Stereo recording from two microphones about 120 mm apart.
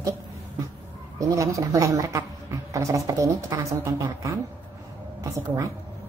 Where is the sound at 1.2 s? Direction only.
25° right (ahead or behind).